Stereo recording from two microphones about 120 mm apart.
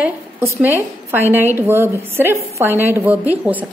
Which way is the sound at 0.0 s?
15° right (ahead or behind).